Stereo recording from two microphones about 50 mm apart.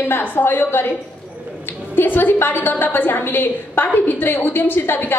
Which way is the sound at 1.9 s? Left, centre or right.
Left.